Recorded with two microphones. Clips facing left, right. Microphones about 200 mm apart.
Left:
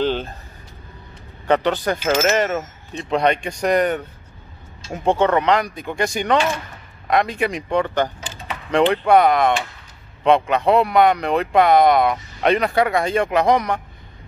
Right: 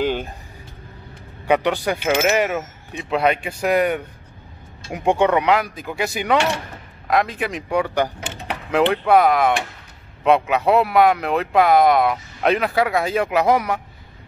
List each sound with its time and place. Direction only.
0.0 s vehicle: 10° right (ahead or behind)
1.5 s speech: 10° right (ahead or behind)
8.2 s a sound: 65° right (ahead or behind)
8.6 s speech: 5° right (ahead or behind)